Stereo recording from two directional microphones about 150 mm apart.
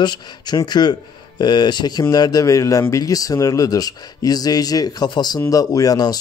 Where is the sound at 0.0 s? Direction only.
30° left (ahead or behind).